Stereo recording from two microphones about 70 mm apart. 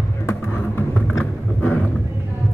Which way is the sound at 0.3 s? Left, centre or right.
Left.